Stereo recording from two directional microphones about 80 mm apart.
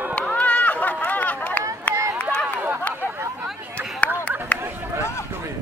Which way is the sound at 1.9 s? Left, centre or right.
Right.